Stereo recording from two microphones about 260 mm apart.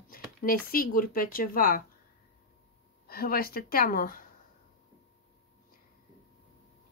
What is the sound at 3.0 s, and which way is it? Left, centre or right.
Speech, left.